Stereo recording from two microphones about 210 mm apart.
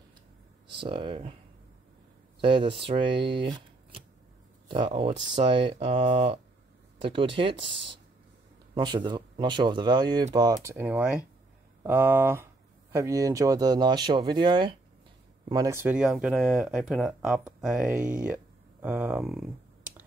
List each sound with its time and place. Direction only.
0.7 s speech: 25° right (ahead or behind)
2.4 s speech: 25° right (ahead or behind)
7.5 s speech: 60° right (ahead or behind)
8.7 s speech: 20° right (ahead or behind); by 19.4 s 5° right (ahead or behind)